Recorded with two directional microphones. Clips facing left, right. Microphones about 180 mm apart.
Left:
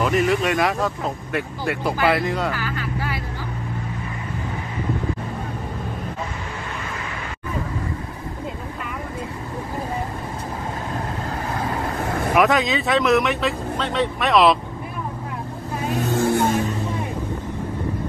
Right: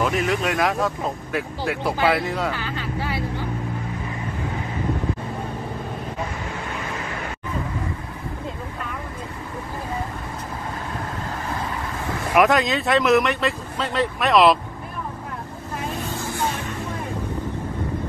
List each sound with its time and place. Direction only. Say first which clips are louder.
0.0 s speech: left 3 dB; centre (ahead or behind)
2.5 s music: left 1 dB; 25° right (ahead or behind)
12.4 s speech: right 1 dB; centre (ahead or behind)
16.1 s vehicle: left 9 dB; 55° left (ahead or behind)